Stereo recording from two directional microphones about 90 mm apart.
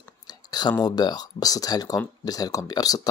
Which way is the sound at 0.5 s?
50° left (ahead or behind).